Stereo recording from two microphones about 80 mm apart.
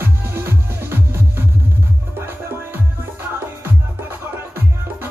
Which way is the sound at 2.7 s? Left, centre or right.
Right.